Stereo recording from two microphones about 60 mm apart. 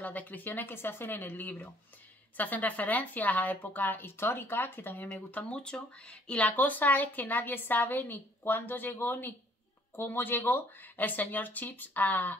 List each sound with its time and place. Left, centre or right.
0.0 s a woman's voice: left
5.3 s speech: centre
6.5 s a woman's voice: left